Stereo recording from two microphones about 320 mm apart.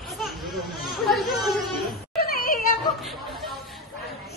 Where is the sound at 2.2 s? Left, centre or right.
Left.